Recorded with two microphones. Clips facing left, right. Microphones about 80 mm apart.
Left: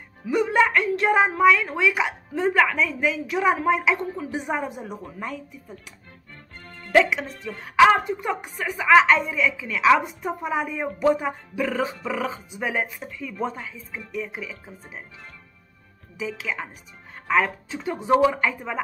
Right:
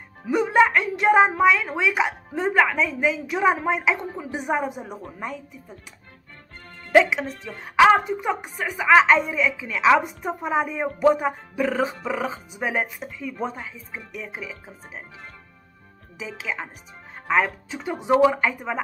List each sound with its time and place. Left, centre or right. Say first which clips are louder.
0.3 s a woman's voice: right 2 dB; centre
6.9 s a woman's voice: right 2 dB; centre
16.2 s speech: left 1 dB; centre